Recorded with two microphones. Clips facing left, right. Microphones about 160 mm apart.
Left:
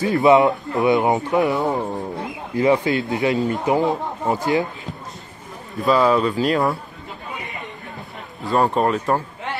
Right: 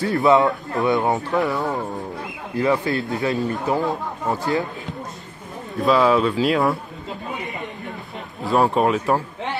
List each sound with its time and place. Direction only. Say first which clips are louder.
0.0 s a man's voice: left 2 dB; 20° left (ahead or behind)
5.8 s speech: even; centre (ahead or behind)
8.5 s speech: even; 5° right (ahead or behind)